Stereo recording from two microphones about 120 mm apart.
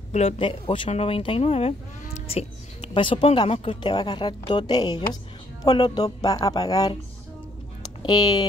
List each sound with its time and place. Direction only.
0.1 s speech: 75° left (ahead or behind)
0.4 s speech: 45° left (ahead or behind)
0.8 s speech: 55° left (ahead or behind)
2.9 s speech: 45° left (ahead or behind)
3.8 s a woman's voice: 40° left (ahead or behind)
8.0 s a woman's voice: 40° left (ahead or behind)